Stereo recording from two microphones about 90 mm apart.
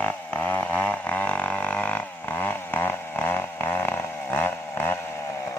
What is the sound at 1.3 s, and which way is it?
Didgeridoo, 15° left (ahead or behind).